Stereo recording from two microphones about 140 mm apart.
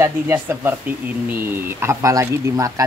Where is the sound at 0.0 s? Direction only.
15° right (ahead or behind).